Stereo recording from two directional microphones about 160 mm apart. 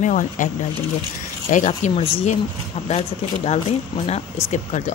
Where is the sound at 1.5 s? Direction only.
50° left (ahead or behind).